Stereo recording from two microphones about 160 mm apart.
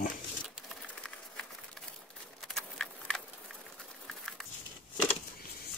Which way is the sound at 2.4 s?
5° left (ahead or behind).